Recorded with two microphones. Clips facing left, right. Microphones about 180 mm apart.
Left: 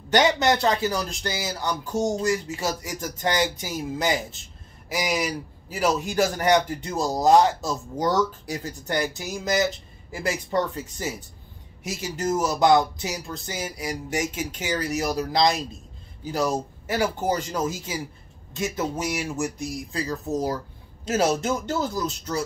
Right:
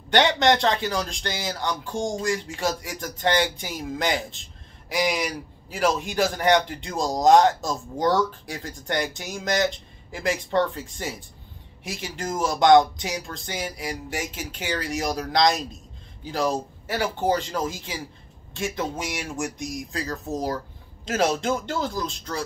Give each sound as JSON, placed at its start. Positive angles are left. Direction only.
{"t": 0.1, "sound": "speech", "side_deg": 5}
{"t": 12.2, "sound": "speech", "side_deg": 5}
{"t": 14.2, "sound": "speech", "side_deg": 45}
{"t": 14.6, "sound": "speech", "side_deg": 5}